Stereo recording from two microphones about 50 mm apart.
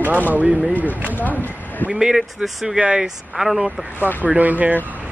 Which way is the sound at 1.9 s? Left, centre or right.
Centre.